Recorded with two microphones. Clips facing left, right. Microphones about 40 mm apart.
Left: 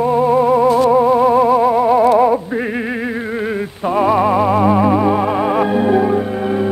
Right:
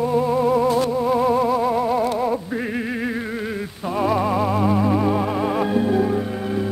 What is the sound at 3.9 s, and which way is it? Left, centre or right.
Music, centre.